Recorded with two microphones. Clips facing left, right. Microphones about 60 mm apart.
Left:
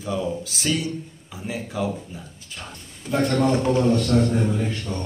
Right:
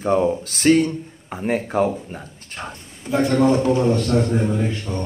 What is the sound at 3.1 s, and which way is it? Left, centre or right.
A man's voice, centre.